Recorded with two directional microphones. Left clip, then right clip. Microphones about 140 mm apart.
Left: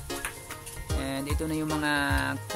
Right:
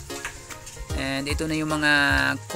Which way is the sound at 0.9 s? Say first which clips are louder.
Right 5 dB; 25° right (ahead or behind).